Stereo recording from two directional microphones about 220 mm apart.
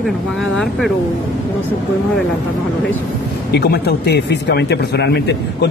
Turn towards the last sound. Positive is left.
turn(degrees=50)  # may be behind; listen again after turning